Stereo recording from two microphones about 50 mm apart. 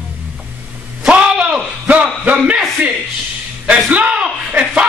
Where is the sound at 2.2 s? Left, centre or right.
Right.